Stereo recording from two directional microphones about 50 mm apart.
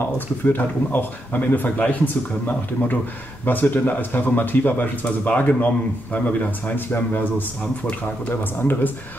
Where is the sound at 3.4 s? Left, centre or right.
Left.